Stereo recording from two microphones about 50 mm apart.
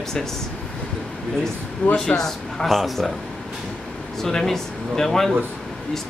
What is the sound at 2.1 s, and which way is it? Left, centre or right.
Speech, centre.